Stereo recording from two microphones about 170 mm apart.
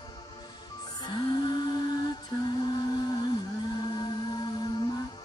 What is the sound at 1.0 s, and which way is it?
Music, 25° left (ahead or behind).